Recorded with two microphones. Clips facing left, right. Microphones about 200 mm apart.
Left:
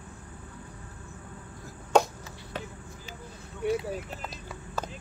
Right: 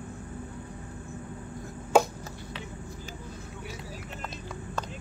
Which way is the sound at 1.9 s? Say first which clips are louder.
Even; 5° right (ahead or behind).